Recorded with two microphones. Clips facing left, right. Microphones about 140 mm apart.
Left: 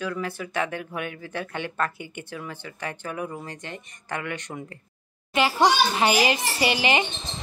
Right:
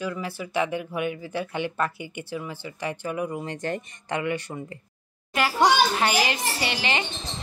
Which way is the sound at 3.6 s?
40° right (ahead or behind).